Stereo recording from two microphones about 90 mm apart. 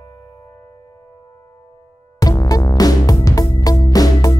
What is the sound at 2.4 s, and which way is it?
Music, 45° left (ahead or behind).